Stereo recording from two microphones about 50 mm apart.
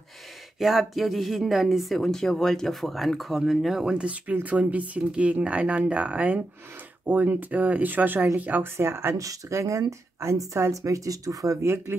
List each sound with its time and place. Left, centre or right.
0.6 s speech: centre
2.0 s speech: centre
4.0 s speech: right
8.7 s speech: right
11.4 s speech: right